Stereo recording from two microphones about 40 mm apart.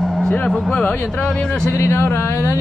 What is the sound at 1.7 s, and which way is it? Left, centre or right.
Speech, left.